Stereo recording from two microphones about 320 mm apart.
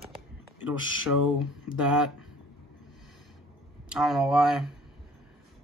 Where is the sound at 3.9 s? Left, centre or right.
Centre.